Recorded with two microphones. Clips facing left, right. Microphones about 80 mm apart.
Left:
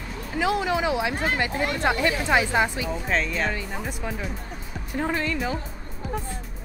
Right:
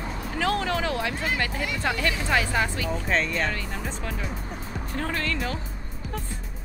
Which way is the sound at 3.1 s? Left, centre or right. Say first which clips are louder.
Even; centre.